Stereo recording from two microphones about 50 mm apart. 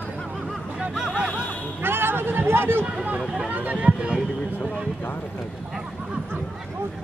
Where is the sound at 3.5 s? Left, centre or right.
Right.